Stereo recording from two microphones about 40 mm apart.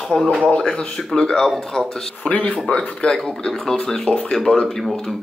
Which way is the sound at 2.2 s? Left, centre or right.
Left.